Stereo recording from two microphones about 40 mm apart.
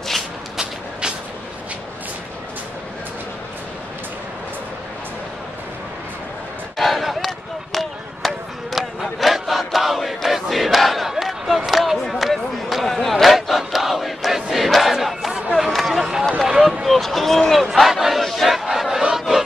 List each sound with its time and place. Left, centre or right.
6.8 s a sound: centre
7.2 s basketball bounce: centre
12.1 s a sound: centre
12.8 s battle cry: centre
15.7 s run: centre
16.4 s boat: centre
16.8 s a sound: centre
18.2 s battle cry: centre
18.7 s battle cry: centre